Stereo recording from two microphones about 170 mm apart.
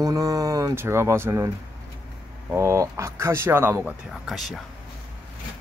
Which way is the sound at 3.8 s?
Centre (ahead or behind).